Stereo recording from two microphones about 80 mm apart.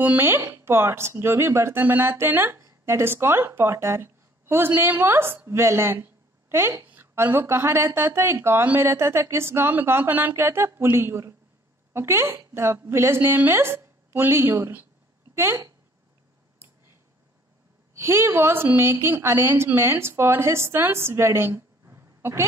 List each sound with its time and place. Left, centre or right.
0.0 s a woman's voice: right
17.9 s speech: right